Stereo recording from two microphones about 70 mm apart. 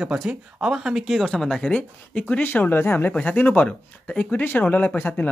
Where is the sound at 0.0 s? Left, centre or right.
Centre.